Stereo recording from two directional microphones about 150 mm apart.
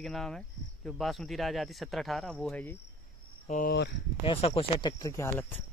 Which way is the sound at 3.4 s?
55° left (ahead or behind).